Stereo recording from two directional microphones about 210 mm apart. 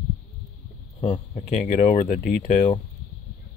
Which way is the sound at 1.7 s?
30° left (ahead or behind).